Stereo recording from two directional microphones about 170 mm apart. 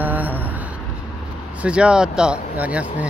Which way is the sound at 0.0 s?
10° right (ahead or behind).